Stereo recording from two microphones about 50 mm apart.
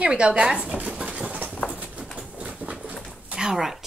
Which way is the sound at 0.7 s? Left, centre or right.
Right.